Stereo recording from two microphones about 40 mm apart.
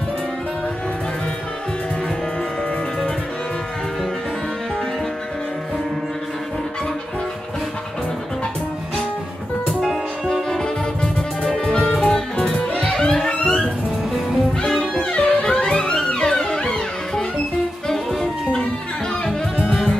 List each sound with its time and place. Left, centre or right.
10.2 s music: centre
12.7 s music: centre
14.7 s music: left
19.5 s music: left